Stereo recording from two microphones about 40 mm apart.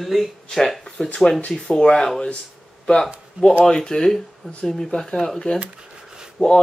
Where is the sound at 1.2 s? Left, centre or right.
Centre.